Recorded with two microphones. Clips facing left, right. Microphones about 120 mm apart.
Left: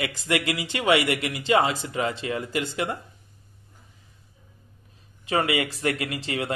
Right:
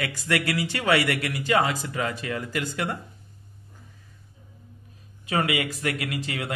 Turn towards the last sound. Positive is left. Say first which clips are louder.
# left 2 dB
turn(degrees=25)  # may be behind; listen again after turning